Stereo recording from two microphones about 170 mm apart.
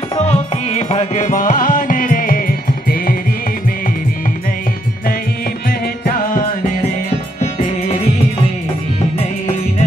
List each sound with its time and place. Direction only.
0.2 s music: 40° left (ahead or behind); by 3.2 s 60° left (ahead or behind)
6.0 s music: 55° left (ahead or behind)